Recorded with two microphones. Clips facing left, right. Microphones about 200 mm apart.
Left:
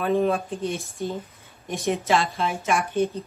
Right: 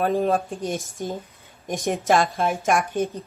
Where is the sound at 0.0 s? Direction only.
35° right (ahead or behind).